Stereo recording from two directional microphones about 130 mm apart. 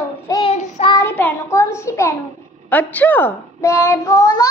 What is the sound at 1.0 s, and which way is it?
A child's voice, 20° left (ahead or behind).